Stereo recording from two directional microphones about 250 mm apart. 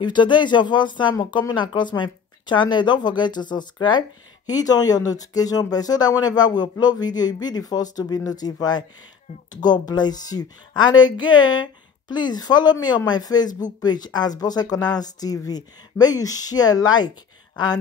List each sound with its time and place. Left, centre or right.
0.0 s speech: centre